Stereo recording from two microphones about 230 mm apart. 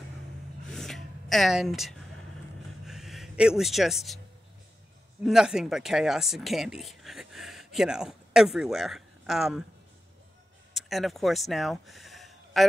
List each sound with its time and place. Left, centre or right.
0.7 s a sound: centre
5.2 s speech: centre
10.7 s speech: centre